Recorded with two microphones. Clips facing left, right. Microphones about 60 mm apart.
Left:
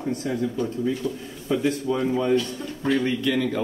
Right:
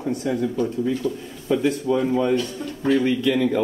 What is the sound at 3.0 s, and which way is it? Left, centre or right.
Speech, right.